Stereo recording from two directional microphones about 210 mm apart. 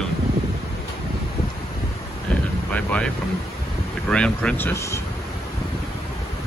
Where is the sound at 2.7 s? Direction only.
5° left (ahead or behind).